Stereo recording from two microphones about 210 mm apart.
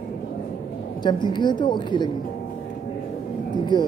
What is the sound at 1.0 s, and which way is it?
A woman's voice, 20° left (ahead or behind).